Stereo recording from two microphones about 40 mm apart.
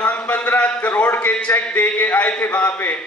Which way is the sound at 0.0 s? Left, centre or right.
Left.